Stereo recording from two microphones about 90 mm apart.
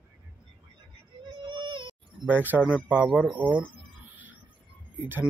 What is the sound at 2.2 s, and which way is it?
Speech, 20° right (ahead or behind).